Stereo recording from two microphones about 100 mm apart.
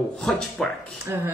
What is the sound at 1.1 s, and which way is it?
Speech, 25° right (ahead or behind).